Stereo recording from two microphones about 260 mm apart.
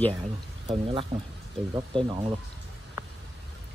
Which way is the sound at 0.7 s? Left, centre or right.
Right.